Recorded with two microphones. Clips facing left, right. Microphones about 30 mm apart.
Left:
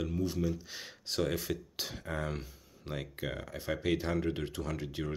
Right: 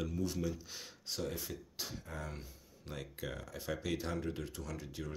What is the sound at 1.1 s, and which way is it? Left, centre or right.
Speech, left.